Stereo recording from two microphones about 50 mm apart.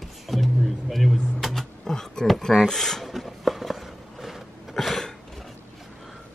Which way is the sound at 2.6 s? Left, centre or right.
Centre.